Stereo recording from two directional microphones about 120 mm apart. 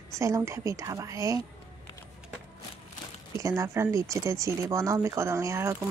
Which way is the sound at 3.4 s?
25° right (ahead or behind).